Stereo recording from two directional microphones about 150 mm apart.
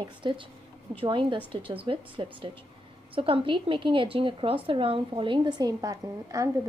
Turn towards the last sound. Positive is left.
turn(degrees=-25)  # may be behind; listen again after turning